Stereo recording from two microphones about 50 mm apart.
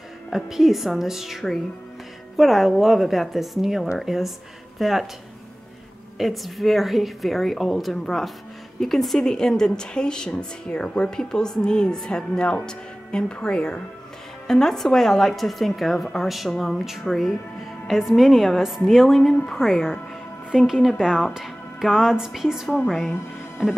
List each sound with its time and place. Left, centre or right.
0.3 s a woman's voice: centre
6.1 s a woman's voice: centre
14.5 s a woman's voice: centre